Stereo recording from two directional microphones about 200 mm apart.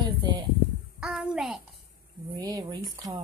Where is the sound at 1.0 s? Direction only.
5° right (ahead or behind).